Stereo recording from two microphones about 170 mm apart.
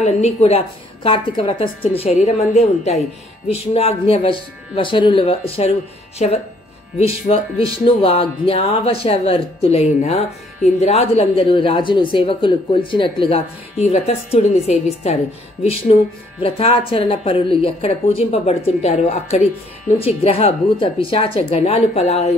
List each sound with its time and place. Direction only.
0.0 s speech: 40° left (ahead or behind)